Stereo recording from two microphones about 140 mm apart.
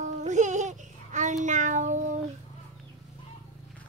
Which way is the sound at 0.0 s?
60° right (ahead or behind).